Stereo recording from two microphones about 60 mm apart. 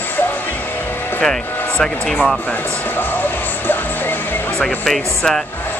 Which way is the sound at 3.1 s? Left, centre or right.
Left.